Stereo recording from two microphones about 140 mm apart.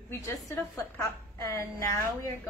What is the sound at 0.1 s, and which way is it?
A woman's voice, 20° left (ahead or behind).